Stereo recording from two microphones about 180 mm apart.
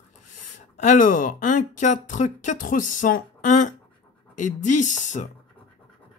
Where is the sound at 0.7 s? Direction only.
45° left (ahead or behind).